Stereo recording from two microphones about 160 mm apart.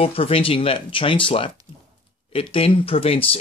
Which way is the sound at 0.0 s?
35° left (ahead or behind).